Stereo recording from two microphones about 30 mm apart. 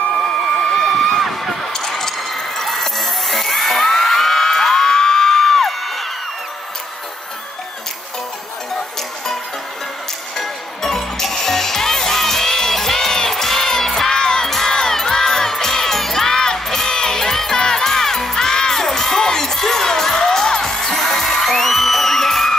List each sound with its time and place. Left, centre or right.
0.7 s run: centre
1.7 s music: centre
3.8 s whoop: centre
10.3 s music: centre
14.5 s crowd: centre
15.5 s music: centre
16.8 s crowd: left
17.6 s music: left